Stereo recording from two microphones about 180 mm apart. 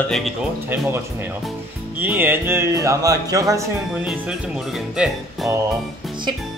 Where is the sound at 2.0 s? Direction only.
10° right (ahead or behind).